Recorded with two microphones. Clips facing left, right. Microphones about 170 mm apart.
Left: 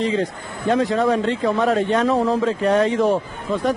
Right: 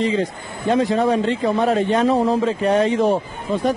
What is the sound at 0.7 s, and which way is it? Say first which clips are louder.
Speech: right 1 dB; 25° right (ahead or behind).